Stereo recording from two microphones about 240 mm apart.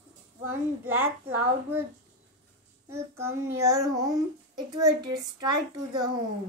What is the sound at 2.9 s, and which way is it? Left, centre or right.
A child's voice, centre.